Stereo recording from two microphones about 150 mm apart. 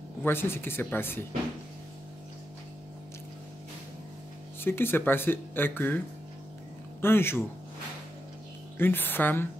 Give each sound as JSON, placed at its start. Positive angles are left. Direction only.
{"t": 0.2, "sound": "speech", "side_deg": 15}
{"t": 4.6, "sound": "speech", "side_deg": 15}
{"t": 7.0, "sound": "speech", "side_deg": 15}
{"t": 8.7, "sound": "speech", "side_deg": 15}